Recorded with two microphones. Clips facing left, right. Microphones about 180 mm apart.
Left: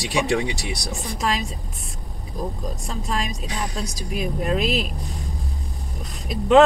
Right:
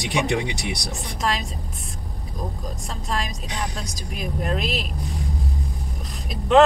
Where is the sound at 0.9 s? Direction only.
Centre (ahead or behind).